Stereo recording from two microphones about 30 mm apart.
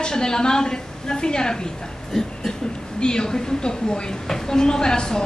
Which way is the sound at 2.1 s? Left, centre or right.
Centre.